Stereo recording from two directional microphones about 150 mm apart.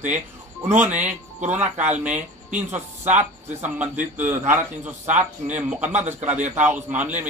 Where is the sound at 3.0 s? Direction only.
50° right (ahead or behind).